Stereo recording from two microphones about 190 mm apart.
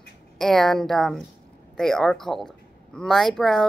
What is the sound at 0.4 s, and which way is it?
Speech, centre (ahead or behind).